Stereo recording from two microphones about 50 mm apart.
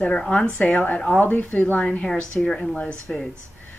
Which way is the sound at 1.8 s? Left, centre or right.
Centre.